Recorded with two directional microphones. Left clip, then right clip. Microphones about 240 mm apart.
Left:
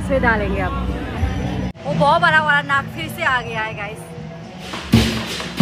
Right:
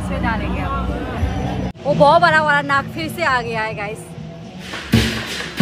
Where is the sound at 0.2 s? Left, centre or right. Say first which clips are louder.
Left 1 dB; left.